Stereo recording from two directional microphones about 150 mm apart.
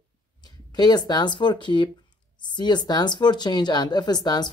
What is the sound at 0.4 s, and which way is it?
Speech, 25° left (ahead or behind).